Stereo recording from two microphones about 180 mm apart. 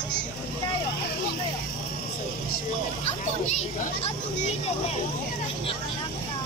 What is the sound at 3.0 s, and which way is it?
A child's voice, 40° left (ahead or behind).